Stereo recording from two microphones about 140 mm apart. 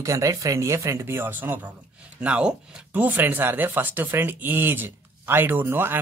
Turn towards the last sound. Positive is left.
turn(degrees=-15)  # may be behind; listen again after turning